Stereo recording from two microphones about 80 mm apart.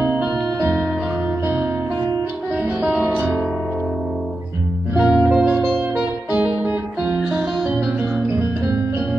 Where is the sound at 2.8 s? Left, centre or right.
Centre.